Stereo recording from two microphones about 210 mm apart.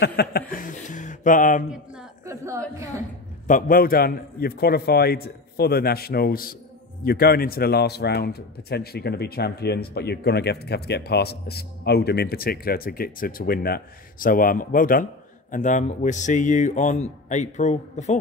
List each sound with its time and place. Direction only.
0.0 s speech: 50° left (ahead or behind)
1.7 s a sound: 5° right (ahead or behind)
3.4 s speech: 40° left (ahead or behind)